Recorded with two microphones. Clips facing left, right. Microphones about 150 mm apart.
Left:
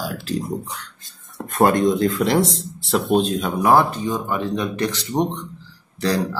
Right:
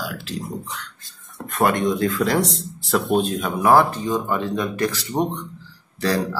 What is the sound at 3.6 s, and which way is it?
Speech, 15° left (ahead or behind).